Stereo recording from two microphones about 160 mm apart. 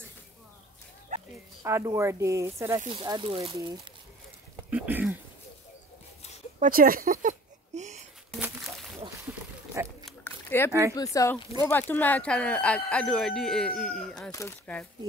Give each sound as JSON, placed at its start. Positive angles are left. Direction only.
{"t": 1.6, "sound": "speech", "side_deg": -15}
{"t": 2.9, "sound": "speech", "side_deg": -30}
{"t": 4.6, "sound": "speech", "side_deg": -10}
{"t": 6.6, "sound": "a sound", "side_deg": -60}
{"t": 8.4, "sound": "a sound", "side_deg": 0}
{"t": 9.8, "sound": "speech", "side_deg": -15}
{"t": 10.2, "sound": "a sound", "side_deg": 15}
{"t": 10.7, "sound": "speech", "side_deg": -20}
{"t": 11.0, "sound": "speech", "side_deg": 20}